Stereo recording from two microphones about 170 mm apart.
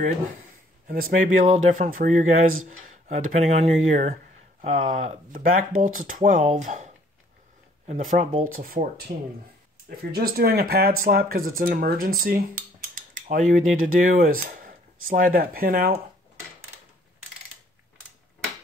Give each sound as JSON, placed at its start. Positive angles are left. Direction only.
{"t": 0.8, "sound": "speech", "side_deg": -55}
{"t": 12.8, "sound": "cutlery", "side_deg": -55}